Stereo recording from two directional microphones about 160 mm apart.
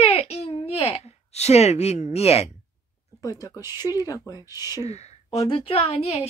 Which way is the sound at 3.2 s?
20° left (ahead or behind).